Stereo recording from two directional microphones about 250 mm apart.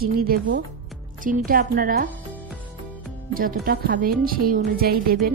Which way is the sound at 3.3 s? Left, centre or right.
Right.